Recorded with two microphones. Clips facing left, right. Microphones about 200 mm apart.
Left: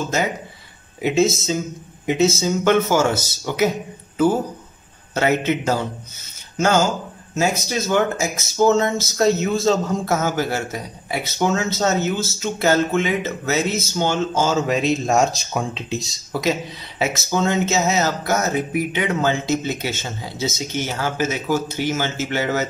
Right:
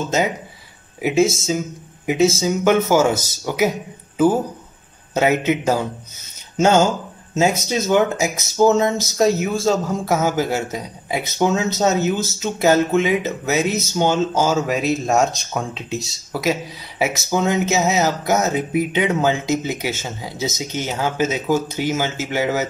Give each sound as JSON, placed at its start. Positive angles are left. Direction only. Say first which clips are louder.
{"t": 1.0, "sound": "speech", "louder": "right 1 dB", "side_deg": -10}
{"t": 5.1, "sound": "speech", "louder": "right 2 dB", "side_deg": -15}
{"t": 7.3, "sound": "speech", "louder": "right 3 dB", "side_deg": -20}